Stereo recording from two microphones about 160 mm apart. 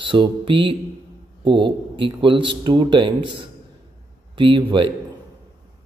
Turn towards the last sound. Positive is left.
turn(degrees=-30)  # may be behind; listen again after turning